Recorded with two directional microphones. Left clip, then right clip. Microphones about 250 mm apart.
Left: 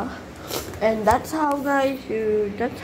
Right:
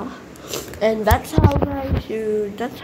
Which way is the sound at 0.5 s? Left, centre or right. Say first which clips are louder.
Right 2 dB; centre.